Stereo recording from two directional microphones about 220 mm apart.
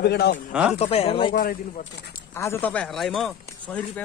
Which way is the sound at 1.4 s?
40° left (ahead or behind).